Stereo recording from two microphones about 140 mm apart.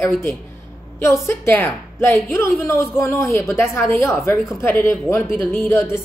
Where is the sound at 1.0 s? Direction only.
20° left (ahead or behind).